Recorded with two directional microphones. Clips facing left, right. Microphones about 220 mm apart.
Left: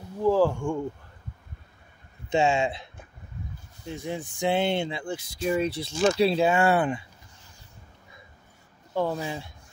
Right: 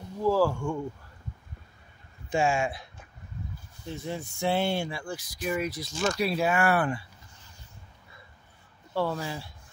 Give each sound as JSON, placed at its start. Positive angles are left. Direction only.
{"t": 0.2, "sound": "a sound", "side_deg": 15}
{"t": 2.2, "sound": "speech", "side_deg": 25}
{"t": 3.9, "sound": "speech", "side_deg": 15}
{"t": 8.9, "sound": "speech", "side_deg": 15}